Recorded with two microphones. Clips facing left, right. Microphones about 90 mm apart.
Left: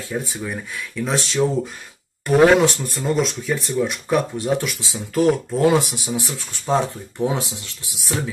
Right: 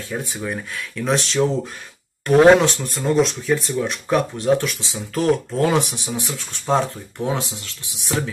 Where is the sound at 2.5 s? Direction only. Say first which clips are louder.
Even; centre (ahead or behind).